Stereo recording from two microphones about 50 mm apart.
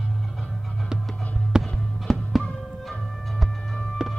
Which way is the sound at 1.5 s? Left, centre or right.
Centre.